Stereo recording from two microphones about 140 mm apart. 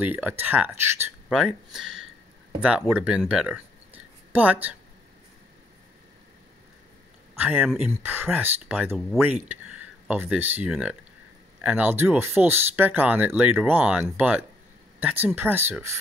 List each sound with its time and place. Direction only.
0.0 s speech: 15° right (ahead or behind)
1.3 s speech: 5° right (ahead or behind)
7.3 s speech: 10° right (ahead or behind)